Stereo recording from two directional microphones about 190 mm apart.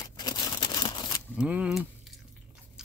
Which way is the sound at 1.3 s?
5° right (ahead or behind).